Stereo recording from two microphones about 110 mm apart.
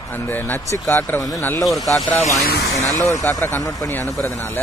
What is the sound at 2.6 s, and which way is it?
Speech, 30° left (ahead or behind).